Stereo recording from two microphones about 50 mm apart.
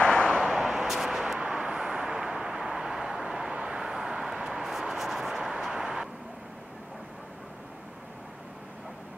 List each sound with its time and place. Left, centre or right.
0.0 s a sound: centre
0.5 s vehicle: centre
1.4 s vehicle: centre